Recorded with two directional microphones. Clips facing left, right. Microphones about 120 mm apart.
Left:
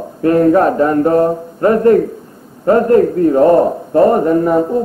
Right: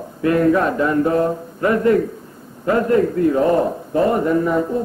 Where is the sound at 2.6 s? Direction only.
40° left (ahead or behind).